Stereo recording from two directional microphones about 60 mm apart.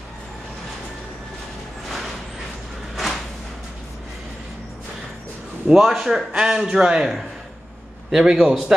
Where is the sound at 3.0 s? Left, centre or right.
Centre.